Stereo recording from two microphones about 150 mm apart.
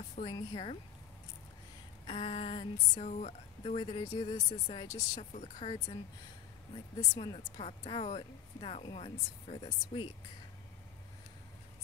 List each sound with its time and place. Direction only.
0.2 s speech: 30° left (ahead or behind)
2.0 s speech: 40° left (ahead or behind)
3.1 s speech: 50° left (ahead or behind)
3.8 s speech: 30° left (ahead or behind)